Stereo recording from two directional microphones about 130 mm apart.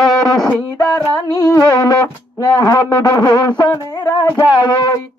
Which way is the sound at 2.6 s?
25° left (ahead or behind).